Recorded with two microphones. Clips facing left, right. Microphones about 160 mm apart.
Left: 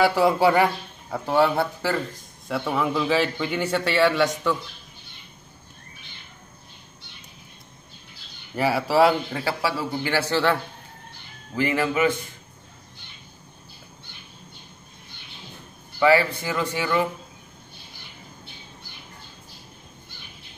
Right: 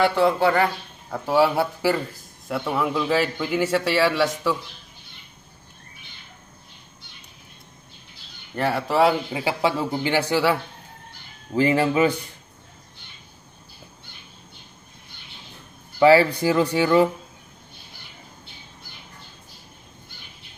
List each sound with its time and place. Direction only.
0.0 s speech: 5° left (ahead or behind)
1.1 s a man's voice: 5° right (ahead or behind)
8.5 s a man's voice: 5° left (ahead or behind)
9.3 s speech: 15° right (ahead or behind)
11.5 s speech: 30° right (ahead or behind)
16.0 s speech: 30° right (ahead or behind)